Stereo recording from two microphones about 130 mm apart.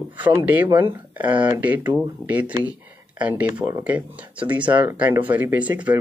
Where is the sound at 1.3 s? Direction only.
40° right (ahead or behind).